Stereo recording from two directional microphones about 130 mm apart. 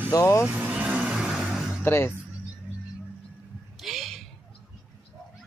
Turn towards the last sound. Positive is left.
turn(degrees=0)  # may be behind; listen again after turning